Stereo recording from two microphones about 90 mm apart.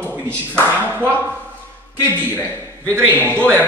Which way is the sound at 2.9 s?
20° right (ahead or behind).